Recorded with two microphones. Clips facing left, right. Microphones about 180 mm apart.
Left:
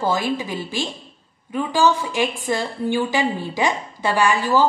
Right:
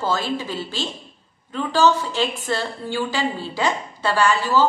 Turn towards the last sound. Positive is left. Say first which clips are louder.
# left 1 dB
turn(degrees=15)  # may be behind; listen again after turning